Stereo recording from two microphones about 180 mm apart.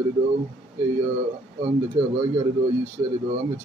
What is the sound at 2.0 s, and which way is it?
Speech, 35° right (ahead or behind).